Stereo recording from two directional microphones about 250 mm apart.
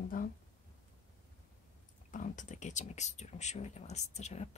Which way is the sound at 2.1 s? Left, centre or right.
Left.